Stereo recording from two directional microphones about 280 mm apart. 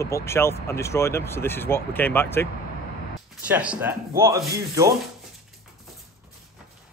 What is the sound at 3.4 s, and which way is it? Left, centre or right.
A man's voice, centre.